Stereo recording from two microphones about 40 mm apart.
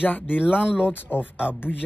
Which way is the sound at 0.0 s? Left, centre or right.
Left.